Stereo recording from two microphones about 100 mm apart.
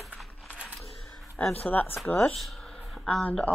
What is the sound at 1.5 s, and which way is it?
Speech, 15° left (ahead or behind).